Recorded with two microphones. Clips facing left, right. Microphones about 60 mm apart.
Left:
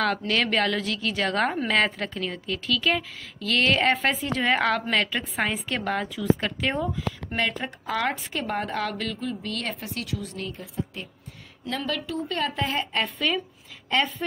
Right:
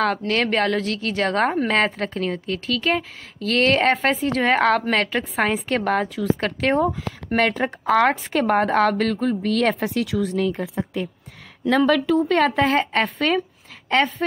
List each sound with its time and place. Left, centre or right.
0.3 s a woman's voice: right
8.3 s a woman's voice: right
13.0 s a woman's voice: right